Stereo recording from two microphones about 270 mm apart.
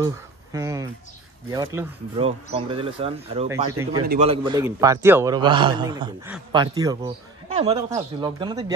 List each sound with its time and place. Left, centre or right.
0.0 s speech: centre
3.4 s a man's voice: centre